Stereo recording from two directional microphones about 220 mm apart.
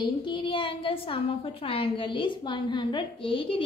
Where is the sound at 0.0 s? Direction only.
20° left (ahead or behind).